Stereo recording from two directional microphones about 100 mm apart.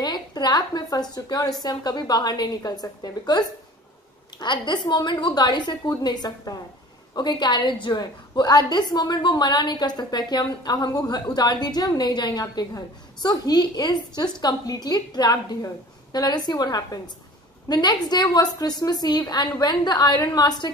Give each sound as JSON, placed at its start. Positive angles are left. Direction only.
{"t": 0.0, "sound": "a woman's voice", "side_deg": 45}